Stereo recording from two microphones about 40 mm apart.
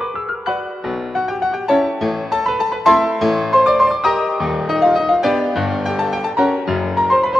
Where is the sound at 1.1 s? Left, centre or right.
Centre.